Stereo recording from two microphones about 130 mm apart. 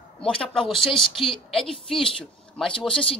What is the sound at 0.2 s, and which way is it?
Speech, 5° left (ahead or behind).